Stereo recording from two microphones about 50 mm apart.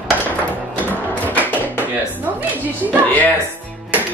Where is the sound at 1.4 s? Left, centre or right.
Right.